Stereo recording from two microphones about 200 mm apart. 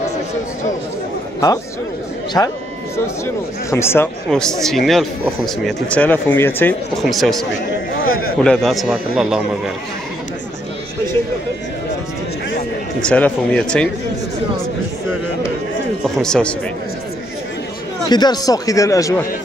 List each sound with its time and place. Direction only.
2.4 s speech: 15° left (ahead or behind)
3.7 s speech: 10° left (ahead or behind)
7.0 s speech: centre (ahead or behind)
8.0 s a man's voice: 45° left (ahead or behind)
8.4 s speech: centre (ahead or behind)
13.0 s speech: 5° left (ahead or behind)
16.0 s speech: 5° left (ahead or behind)
18.0 s speech: 20° left (ahead or behind)